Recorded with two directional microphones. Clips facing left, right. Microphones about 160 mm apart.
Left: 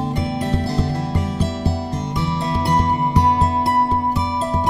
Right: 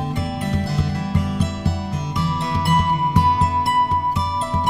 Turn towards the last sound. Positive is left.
turn(degrees=35)  # may be behind; listen again after turning